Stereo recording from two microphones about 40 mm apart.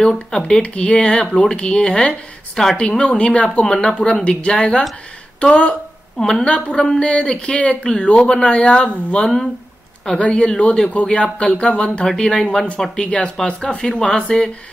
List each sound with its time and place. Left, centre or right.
0.0 s speech: centre
0.5 s speech: left
1.1 s speech: centre
3.0 s speech: left
3.6 s speech: centre
6.1 s a woman's voice: centre
6.4 s a man's voice: left
12.1 s speech: centre